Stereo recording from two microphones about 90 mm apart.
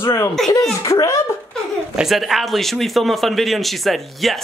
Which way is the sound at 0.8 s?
40° left (ahead or behind).